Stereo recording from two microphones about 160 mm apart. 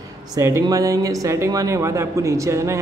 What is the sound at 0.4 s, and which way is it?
Speech, 20° right (ahead or behind).